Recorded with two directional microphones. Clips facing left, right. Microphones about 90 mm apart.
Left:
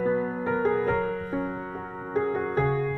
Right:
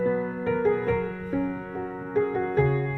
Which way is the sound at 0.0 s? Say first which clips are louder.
Even; 30° left (ahead or behind).